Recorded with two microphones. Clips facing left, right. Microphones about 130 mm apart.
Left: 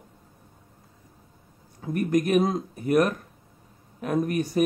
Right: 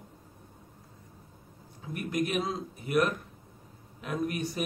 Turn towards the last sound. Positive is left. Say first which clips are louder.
# left 8 dB
turn(degrees=45)  # may be behind; listen again after turning